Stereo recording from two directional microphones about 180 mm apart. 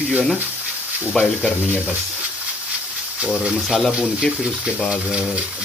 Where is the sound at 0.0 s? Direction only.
5° right (ahead or behind).